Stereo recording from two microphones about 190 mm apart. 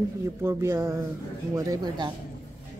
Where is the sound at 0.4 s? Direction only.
15° right (ahead or behind).